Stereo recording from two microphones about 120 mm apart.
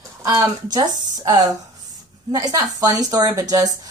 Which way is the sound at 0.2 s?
30° right (ahead or behind).